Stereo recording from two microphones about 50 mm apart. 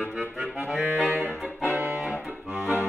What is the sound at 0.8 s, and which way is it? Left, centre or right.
Saxophone, right.